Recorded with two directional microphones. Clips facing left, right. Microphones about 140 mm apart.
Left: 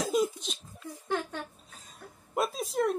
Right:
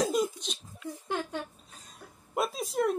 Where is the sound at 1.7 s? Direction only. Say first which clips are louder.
Left 1 dB; centre (ahead or behind).